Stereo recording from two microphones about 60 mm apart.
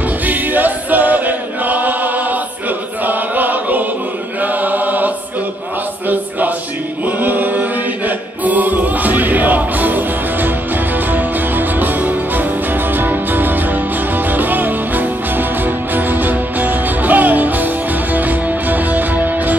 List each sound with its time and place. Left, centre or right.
0.3 s choir: right
4.4 s chant: right
7.1 s choir: right
8.5 s music: right